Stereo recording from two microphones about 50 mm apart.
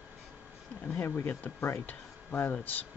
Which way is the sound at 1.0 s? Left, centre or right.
Left.